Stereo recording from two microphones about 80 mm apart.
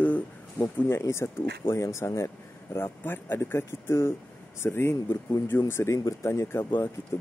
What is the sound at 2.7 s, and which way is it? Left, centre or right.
Speech, left.